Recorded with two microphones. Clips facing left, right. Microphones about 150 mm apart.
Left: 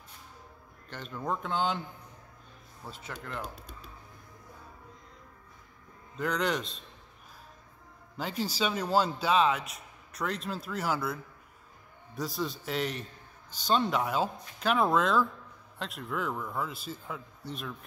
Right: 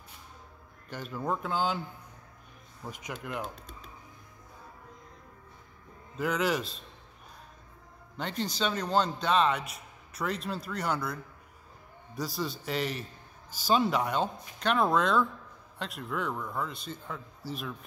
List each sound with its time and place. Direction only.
0.8 s a man's voice: 10° right (ahead or behind)
2.9 s speech: 15° right (ahead or behind)
6.1 s a man's voice: 5° right (ahead or behind)
8.2 s a man's voice: 5° left (ahead or behind)
12.2 s a man's voice: centre (ahead or behind)